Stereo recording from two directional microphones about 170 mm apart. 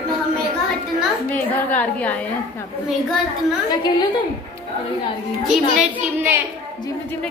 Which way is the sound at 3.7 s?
25° left (ahead or behind).